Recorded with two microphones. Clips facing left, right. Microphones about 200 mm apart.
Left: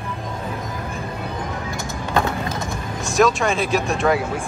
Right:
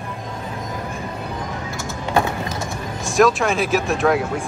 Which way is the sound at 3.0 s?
Centre (ahead or behind).